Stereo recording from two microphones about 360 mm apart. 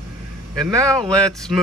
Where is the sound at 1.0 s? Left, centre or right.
Centre.